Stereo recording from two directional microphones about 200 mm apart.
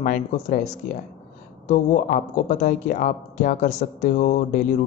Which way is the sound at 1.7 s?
40° left (ahead or behind).